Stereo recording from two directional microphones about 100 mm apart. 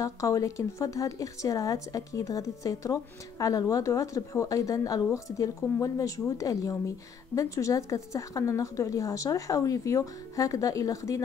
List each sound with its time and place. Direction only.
0.0 s a woman's voice: 35° left (ahead or behind)